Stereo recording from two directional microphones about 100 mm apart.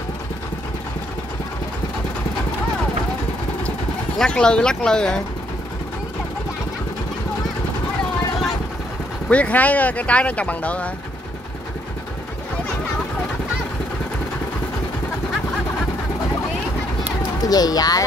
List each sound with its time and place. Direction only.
4.2 s speech: 10° left (ahead or behind)
9.3 s speech: 15° left (ahead or behind)
17.5 s speech: 40° left (ahead or behind)